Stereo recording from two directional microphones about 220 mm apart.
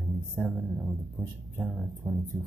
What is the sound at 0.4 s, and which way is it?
Speech, centre (ahead or behind).